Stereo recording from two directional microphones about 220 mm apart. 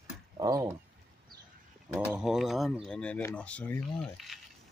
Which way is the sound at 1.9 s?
5° right (ahead or behind).